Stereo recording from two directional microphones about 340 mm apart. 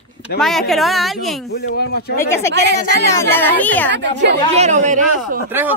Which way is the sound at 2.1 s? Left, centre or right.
Centre.